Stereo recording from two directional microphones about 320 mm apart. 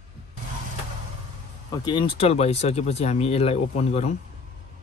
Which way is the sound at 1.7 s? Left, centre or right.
Centre.